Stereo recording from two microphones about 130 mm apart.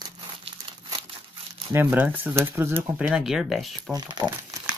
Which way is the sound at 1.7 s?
15° right (ahead or behind).